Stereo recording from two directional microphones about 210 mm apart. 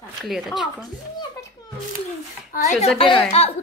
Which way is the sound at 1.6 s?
15° left (ahead or behind).